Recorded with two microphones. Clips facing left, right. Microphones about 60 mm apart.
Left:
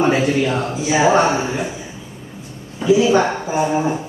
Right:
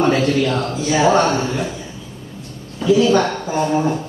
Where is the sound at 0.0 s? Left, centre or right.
Centre.